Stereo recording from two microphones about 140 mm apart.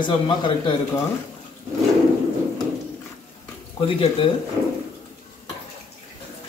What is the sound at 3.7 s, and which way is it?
Speech, 40° left (ahead or behind).